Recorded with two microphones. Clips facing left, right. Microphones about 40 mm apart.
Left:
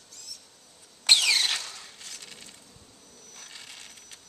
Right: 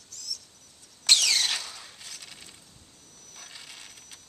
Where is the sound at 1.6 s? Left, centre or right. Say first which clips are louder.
Even; centre.